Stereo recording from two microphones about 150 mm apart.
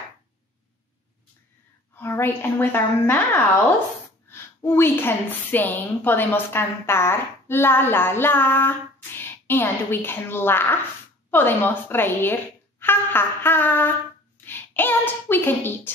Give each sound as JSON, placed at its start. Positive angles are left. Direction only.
{"t": 2.0, "sound": "a woman's voice", "side_deg": 15}
{"t": 4.3, "sound": "a woman's voice", "side_deg": 15}